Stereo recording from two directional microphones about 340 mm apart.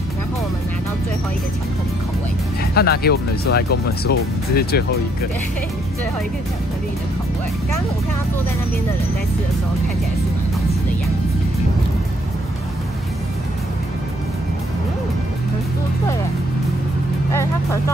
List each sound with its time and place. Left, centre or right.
2.7 s speech: left